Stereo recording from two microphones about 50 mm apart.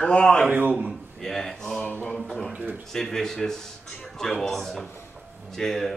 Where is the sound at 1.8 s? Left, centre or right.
Left.